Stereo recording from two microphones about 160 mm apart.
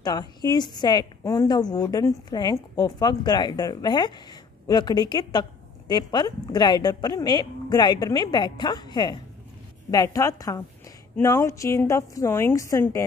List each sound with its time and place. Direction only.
0.0 s a woman's voice: 25° left (ahead or behind)